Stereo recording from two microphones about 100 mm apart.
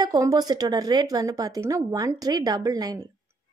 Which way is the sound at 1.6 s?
25° right (ahead or behind).